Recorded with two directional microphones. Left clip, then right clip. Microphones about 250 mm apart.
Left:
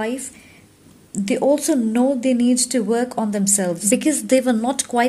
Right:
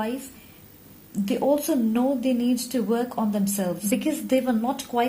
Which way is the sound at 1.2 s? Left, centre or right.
Left.